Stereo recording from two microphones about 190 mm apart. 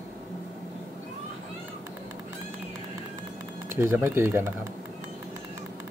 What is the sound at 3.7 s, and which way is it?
Speech, 15° right (ahead or behind).